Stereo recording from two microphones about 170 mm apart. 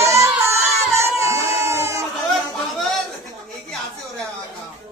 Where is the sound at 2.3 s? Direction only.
Centre (ahead or behind).